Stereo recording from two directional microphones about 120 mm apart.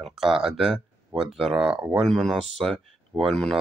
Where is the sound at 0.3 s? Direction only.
5° right (ahead or behind).